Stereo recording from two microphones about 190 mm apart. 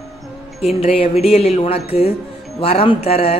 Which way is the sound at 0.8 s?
30° left (ahead or behind).